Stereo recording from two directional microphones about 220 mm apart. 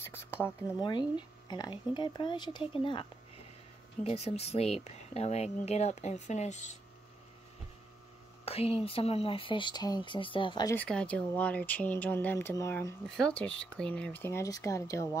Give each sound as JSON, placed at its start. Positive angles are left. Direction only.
{"t": 0.0, "sound": "a sound", "side_deg": 10}
{"t": 0.8, "sound": "speech", "side_deg": 20}
{"t": 8.5, "sound": "speech", "side_deg": 25}